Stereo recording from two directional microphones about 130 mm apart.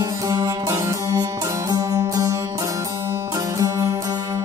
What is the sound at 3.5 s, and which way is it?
Music, 25° right (ahead or behind).